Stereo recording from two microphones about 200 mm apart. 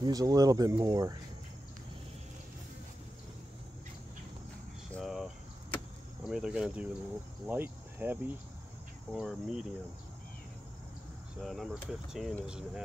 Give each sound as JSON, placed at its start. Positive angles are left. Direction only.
{"t": 0.0, "sound": "speech", "side_deg": -20}
{"t": 4.9, "sound": "a sound", "side_deg": 0}
{"t": 6.2, "sound": "speech", "side_deg": -5}
{"t": 11.4, "sound": "speech", "side_deg": 0}